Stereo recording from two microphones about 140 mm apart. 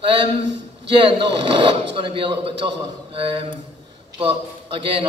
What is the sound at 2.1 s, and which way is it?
A man's voice, 40° right (ahead or behind).